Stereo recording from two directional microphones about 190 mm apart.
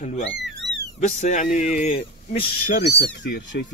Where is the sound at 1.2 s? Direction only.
40° left (ahead or behind).